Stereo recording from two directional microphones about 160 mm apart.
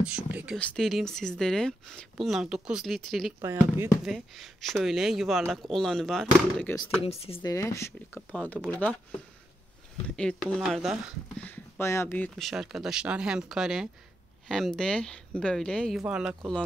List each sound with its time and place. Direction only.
0.0 s speech: 10° right (ahead or behind)
0.6 s speech: 5° left (ahead or behind)
3.4 s speech: 15° right (ahead or behind)
4.0 s speech: centre (ahead or behind)
7.0 s speech: 40° left (ahead or behind)
7.4 s speech: 20° left (ahead or behind)
10.0 s speech: 5° left (ahead or behind)
11.8 s speech: 15° left (ahead or behind)
12.4 s speech: centre (ahead or behind)